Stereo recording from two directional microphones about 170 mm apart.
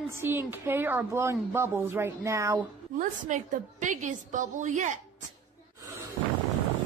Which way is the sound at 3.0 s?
50° right (ahead or behind).